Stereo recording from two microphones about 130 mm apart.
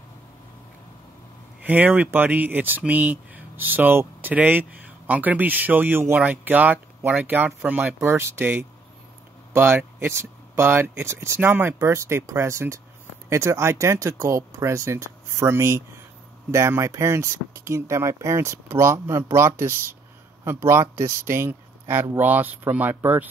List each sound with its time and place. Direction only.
1.6 s speech: 15° right (ahead or behind)